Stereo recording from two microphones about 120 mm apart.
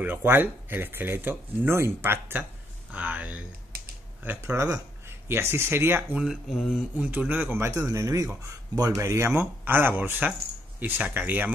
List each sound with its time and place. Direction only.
0.0 s speech: 15° right (ahead or behind)
6.1 s speech: centre (ahead or behind)
7.0 s speech: 15° right (ahead or behind)